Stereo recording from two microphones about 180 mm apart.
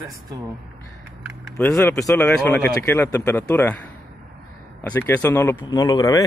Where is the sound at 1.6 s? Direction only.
10° left (ahead or behind).